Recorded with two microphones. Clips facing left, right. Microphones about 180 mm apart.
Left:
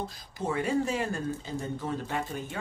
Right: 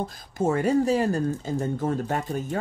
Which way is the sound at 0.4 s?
45° right (ahead or behind).